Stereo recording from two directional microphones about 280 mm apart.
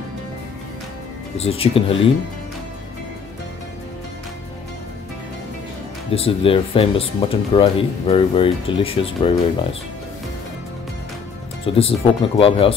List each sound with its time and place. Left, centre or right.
1.4 s speech: left
6.1 s speech: centre
11.6 s speech: centre